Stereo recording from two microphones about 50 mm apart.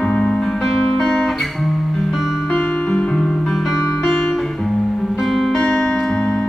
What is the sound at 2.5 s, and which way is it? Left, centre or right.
Music, centre.